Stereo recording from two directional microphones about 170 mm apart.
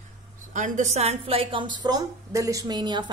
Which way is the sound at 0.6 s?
45° right (ahead or behind).